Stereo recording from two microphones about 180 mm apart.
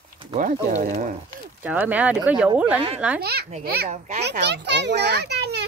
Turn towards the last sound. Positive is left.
turn(degrees=-65)  # may be behind; listen again after turning